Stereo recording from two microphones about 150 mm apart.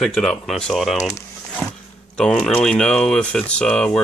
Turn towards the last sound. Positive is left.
turn(degrees=5)  # may be behind; listen again after turning